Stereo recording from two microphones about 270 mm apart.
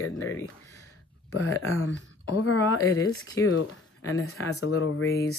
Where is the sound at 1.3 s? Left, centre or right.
Left.